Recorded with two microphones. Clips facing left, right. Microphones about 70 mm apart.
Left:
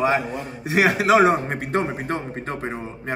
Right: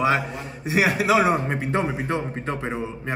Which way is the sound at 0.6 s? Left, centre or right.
Left.